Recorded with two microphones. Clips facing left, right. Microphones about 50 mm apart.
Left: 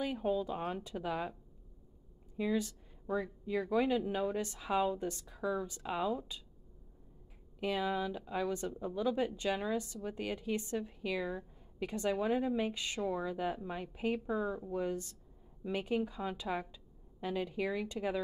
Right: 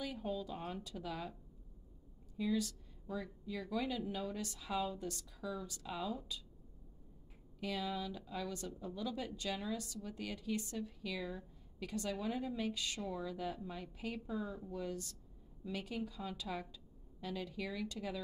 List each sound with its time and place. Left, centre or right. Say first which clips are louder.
0.0 s a woman's voice: left 7 dB; left
2.3 s a woman's voice: left 3 dB; left
7.6 s a woman's voice: left 6 dB; left